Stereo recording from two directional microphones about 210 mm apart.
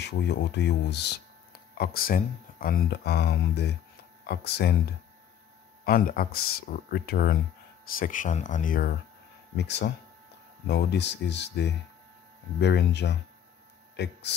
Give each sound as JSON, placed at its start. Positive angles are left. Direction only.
{"t": 0.0, "sound": "speech", "side_deg": 55}
{"t": 5.9, "sound": "speech", "side_deg": 45}
{"t": 9.6, "sound": "speech", "side_deg": 55}